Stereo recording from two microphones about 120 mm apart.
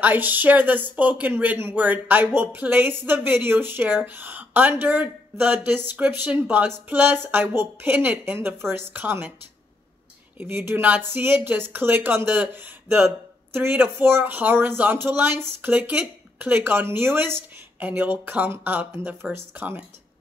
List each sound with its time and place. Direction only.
0.0 s speech: 15° right (ahead or behind)
10.3 s speech: 15° right (ahead or behind)